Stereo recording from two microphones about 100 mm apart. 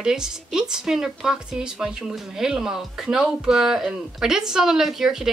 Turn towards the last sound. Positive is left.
turn(degrees=-5)  # may be behind; listen again after turning